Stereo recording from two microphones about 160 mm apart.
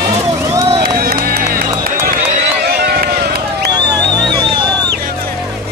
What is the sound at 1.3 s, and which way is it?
Music, 70° right (ahead or behind).